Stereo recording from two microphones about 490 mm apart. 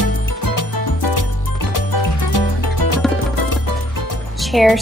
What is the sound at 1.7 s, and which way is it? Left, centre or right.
Music, left.